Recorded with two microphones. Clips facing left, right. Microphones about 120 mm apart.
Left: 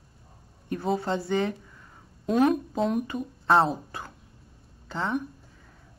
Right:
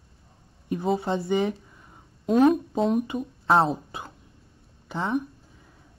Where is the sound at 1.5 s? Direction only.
20° right (ahead or behind).